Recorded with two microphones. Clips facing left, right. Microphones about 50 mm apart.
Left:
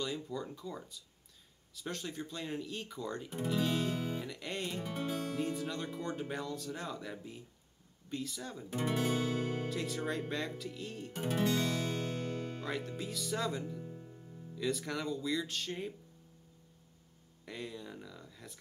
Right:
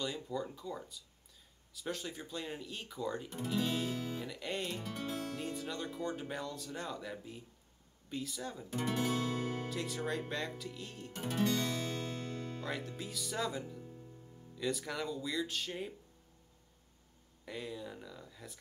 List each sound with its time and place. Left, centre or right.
0.0 s speech: centre
13.7 s music: centre
14.6 s speech: centre
17.5 s speech: centre